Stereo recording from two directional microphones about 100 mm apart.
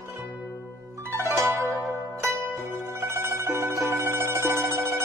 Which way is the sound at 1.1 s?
30° right (ahead or behind).